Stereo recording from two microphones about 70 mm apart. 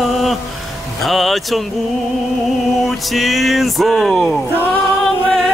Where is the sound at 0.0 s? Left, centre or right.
Centre.